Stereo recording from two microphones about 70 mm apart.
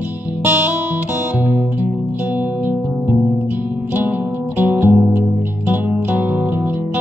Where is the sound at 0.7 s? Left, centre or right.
Right.